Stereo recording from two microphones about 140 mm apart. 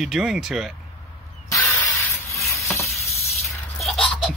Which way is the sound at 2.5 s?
20° left (ahead or behind).